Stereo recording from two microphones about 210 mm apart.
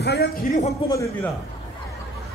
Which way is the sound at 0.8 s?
15° left (ahead or behind).